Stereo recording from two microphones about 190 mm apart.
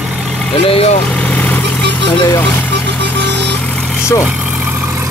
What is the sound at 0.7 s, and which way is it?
Speech, 30° left (ahead or behind).